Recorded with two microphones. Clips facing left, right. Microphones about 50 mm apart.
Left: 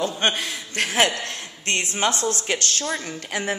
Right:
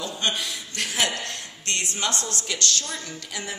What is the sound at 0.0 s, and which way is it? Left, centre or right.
A man's voice, left.